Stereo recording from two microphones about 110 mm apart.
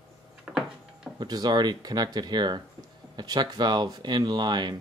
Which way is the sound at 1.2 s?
40° right (ahead or behind).